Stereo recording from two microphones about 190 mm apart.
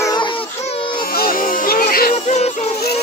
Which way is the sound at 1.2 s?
50° left (ahead or behind).